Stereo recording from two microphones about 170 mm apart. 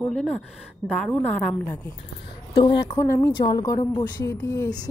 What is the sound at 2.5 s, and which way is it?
A woman's voice, 25° left (ahead or behind).